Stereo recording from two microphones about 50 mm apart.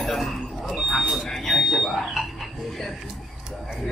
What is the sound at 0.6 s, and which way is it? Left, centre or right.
Buzzer, centre.